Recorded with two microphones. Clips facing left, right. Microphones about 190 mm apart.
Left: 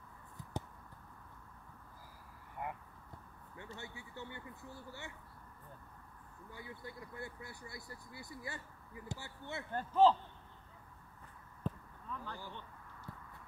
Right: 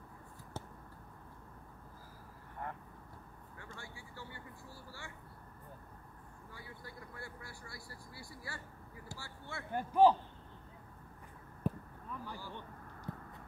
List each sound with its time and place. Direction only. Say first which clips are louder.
0.4 s a sound: left 4 dB; 15° left (ahead or behind)
2.6 s vehicle: left 1 dB; 15° left (ahead or behind)
3.7 s speech: left 3 dB; 20° left (ahead or behind)
6.5 s speech: left 3 dB; 20° left (ahead or behind)
9.7 s a man's voice: right 2 dB; 15° right (ahead or behind)
11.6 s a sound: right 4 dB; 10° right (ahead or behind)
13.1 s clip-clop: right 7 dB; 20° right (ahead or behind)